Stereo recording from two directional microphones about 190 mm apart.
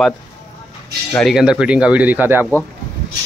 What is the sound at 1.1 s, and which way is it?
Speech, centre (ahead or behind).